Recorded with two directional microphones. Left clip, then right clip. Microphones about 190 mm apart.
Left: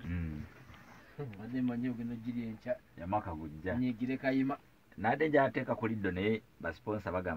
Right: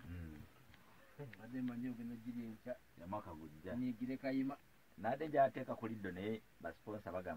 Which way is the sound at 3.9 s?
15° left (ahead or behind).